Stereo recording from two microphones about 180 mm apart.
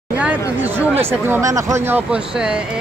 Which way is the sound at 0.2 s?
10° right (ahead or behind).